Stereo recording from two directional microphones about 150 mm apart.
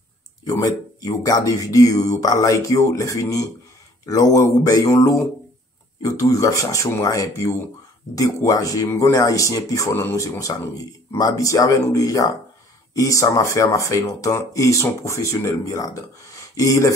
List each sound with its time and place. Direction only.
0.5 s speech: 20° left (ahead or behind)